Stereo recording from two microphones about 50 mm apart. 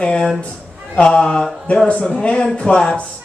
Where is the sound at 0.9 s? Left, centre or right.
Centre.